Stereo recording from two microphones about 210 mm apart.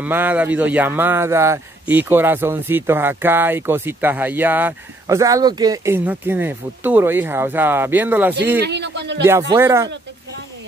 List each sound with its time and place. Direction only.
0.0 s a man's voice: 10° right (ahead or behind)
8.5 s speech: 55° right (ahead or behind)
9.5 s a man's voice: 15° right (ahead or behind)